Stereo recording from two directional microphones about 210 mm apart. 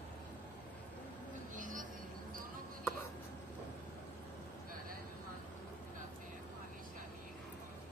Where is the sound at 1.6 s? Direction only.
40° right (ahead or behind).